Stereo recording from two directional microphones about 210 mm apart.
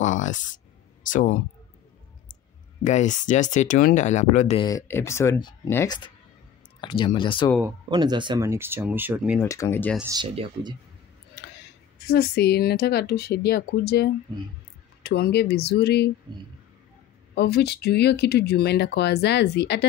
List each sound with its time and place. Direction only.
0.0 s a sound: 35° left (ahead or behind)
1.1 s speech: 35° left (ahead or behind)
2.8 s speech: 35° left (ahead or behind)
4.6 s speech: 15° left (ahead or behind)
7.6 s speech: 20° right (ahead or behind)
9.4 s speech: 15° left (ahead or behind)
10.1 s speech: 25° right (ahead or behind)
12.1 s speech: 50° left (ahead or behind)
17.4 s speech: 50° left (ahead or behind)